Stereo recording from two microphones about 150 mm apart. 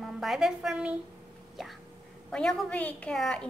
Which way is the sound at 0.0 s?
Centre (ahead or behind).